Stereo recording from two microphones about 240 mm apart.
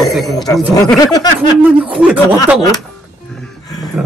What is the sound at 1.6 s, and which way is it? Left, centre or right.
Speech, centre.